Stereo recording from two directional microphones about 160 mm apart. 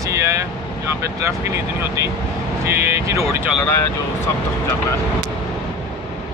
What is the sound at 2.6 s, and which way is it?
Speech, 20° right (ahead or behind).